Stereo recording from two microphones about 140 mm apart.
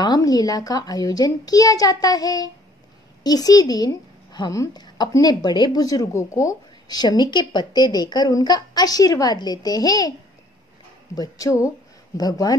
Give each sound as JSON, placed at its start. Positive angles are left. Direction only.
{"t": 0.0, "sound": "a woman's voice", "side_deg": 30}
{"t": 11.1, "sound": "a woman's voice", "side_deg": 25}